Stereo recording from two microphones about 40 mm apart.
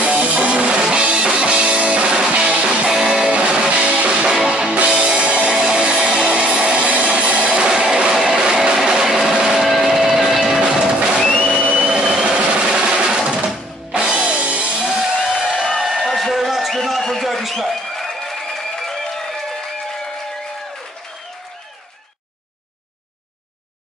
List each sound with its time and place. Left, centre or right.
0.0 s music: right; by 3.3 s centre
3.3 s music: right; by 9.4 s centre
9.4 s vehicle: centre
10.0 s music: centre
11.1 s music: centre
11.5 s a sound: right
12.1 s vehicle: centre
12.6 s music: right
13.9 s music: right
15.8 s a sound: centre
16.1 s a sound: centre
17.0 s a sound: centre